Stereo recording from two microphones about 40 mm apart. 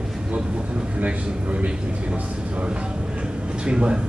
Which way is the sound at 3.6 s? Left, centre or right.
Right.